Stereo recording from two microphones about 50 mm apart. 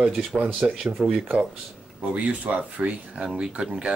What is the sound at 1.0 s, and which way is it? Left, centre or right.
Speech, centre.